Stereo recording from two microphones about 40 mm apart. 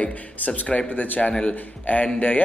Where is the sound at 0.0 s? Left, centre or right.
Left.